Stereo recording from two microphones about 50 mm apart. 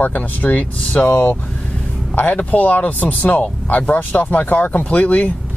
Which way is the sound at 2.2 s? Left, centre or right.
Left.